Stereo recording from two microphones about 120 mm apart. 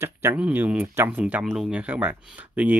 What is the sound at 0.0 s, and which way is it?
Speech, 20° right (ahead or behind).